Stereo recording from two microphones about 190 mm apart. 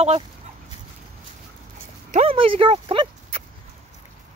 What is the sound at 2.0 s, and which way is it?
Speech, 35° right (ahead or behind).